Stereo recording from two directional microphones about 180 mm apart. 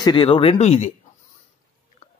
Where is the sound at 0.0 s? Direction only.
25° left (ahead or behind).